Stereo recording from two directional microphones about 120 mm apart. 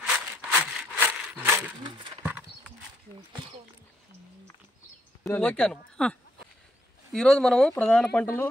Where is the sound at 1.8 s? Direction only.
40° right (ahead or behind).